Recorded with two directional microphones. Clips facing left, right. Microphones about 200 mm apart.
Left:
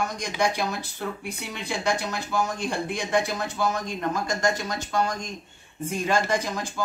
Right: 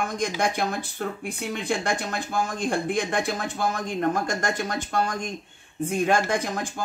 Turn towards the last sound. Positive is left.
turn(degrees=-55)  # may be behind; listen again after turning